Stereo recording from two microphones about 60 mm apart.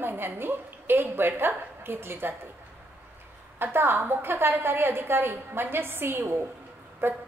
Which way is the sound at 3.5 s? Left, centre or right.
Right.